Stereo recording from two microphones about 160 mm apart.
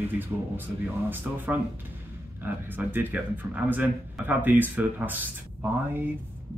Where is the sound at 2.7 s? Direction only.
10° right (ahead or behind).